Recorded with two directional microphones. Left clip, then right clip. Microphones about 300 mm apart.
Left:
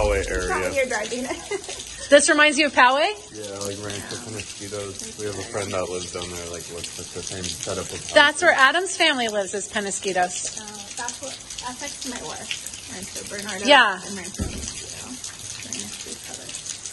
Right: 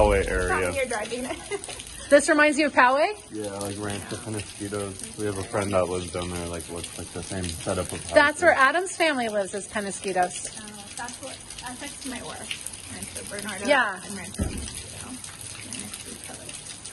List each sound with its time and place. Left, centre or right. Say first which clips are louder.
0.0 s a sound: right 1 dB; right
0.7 s speech: left 4 dB; left
2.0 s a woman's voice: left 3 dB; centre
5.6 s speech: right 3 dB; right
8.1 s a woman's voice: left 3 dB; centre
13.7 s speech: left 7 dB; centre